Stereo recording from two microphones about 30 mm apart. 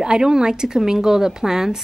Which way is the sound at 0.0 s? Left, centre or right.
Right.